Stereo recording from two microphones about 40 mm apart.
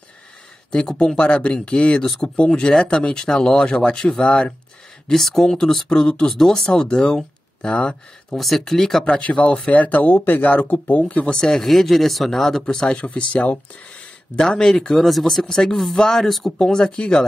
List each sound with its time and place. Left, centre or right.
0.7 s speech: left
8.3 s speech: centre
9.0 s speech: left
11.3 s speech: centre
12.8 s speech: left
14.6 s speech: centre
15.0 s speech: centre
16.5 s speech: centre